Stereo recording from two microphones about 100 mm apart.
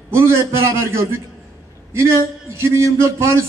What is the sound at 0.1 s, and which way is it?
Speech, 25° right (ahead or behind).